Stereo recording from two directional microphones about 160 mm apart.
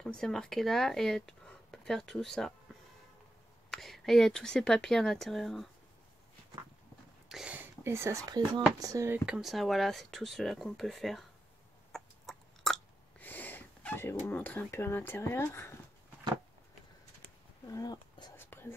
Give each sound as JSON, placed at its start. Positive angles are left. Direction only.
{"t": 0.0, "sound": "speech", "side_deg": 5}
{"t": 3.7, "sound": "speech", "side_deg": 0}
{"t": 7.2, "sound": "speech", "side_deg": -5}
{"t": 9.2, "sound": "speech", "side_deg": -5}
{"t": 11.9, "sound": "chewing", "side_deg": 0}
{"t": 17.6, "sound": "speech", "side_deg": 25}
{"t": 18.3, "sound": "whispering", "side_deg": 15}